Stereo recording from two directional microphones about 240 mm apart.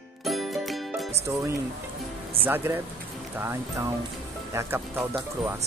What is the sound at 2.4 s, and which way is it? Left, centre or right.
Speech, centre.